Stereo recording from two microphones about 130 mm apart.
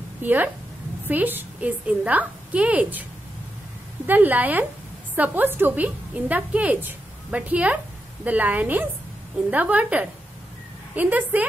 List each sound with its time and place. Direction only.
0.2 s a woman's voice: 15° right (ahead or behind)